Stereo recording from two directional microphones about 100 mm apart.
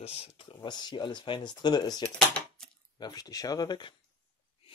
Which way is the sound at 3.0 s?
40° left (ahead or behind).